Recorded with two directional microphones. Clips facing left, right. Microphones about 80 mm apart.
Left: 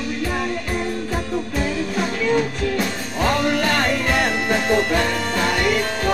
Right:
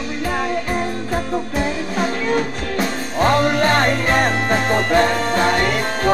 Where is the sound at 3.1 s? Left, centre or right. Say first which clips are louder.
Right 4 dB; right.